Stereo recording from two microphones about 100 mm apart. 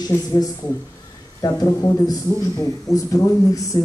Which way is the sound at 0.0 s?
40° left (ahead or behind).